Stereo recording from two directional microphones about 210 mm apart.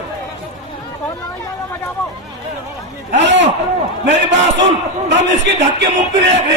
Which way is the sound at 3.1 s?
60° right (ahead or behind).